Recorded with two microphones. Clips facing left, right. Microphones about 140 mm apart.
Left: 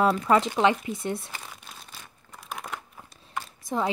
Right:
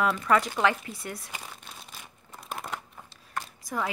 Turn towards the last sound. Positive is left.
turn(degrees=25)  # may be behind; listen again after turning